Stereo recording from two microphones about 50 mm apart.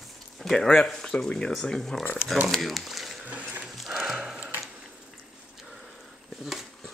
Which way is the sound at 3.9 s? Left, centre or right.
Centre.